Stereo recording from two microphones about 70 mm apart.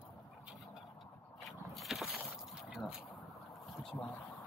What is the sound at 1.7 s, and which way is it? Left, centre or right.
Vehicle, centre.